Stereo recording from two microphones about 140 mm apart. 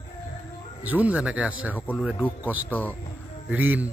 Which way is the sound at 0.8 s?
10° right (ahead or behind).